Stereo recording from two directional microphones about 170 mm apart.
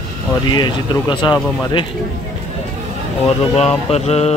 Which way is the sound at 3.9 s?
40° left (ahead or behind).